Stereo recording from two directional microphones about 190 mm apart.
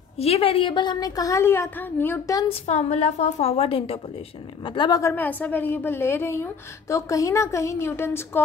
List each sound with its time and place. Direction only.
0.2 s a woman's voice: 30° left (ahead or behind); by 2.4 s 15° left (ahead or behind)
2.4 s a woman's voice: 35° left (ahead or behind); by 8.4 s 10° left (ahead or behind)